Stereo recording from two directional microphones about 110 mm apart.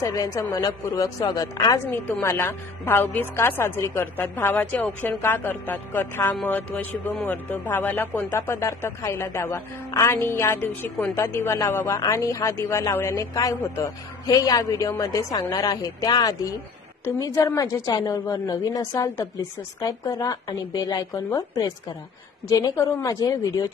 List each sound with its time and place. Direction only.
0.0 s a woman's voice: 30° left (ahead or behind)
1.9 s a woman's voice: 15° left (ahead or behind); by 23.3 s 30° left (ahead or behind)